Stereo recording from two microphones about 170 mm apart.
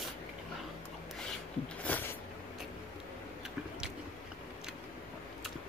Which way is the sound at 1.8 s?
10° left (ahead or behind).